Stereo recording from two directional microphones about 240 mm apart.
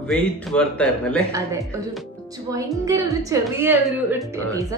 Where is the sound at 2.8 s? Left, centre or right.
Centre.